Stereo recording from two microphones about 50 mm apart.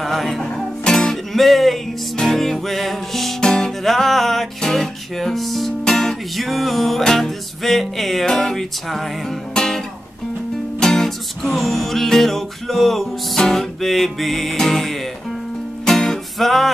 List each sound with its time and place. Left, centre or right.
0.0 s music: centre
0.4 s music: centre
1.1 s music: centre
9.5 s guitar: centre
10.8 s music: centre